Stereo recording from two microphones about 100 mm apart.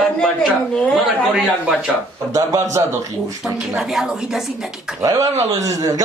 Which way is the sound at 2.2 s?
35° right (ahead or behind).